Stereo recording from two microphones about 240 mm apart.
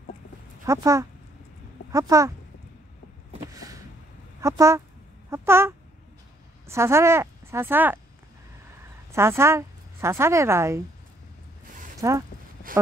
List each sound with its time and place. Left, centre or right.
0.7 s speech: centre
4.4 s speech: centre
9.1 s speech: centre
12.0 s speech: centre
12.7 s speech: right